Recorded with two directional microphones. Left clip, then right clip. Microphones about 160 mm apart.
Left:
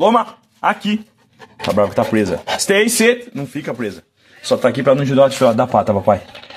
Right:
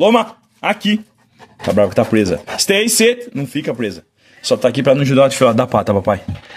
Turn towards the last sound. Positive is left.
turn(degrees=-80)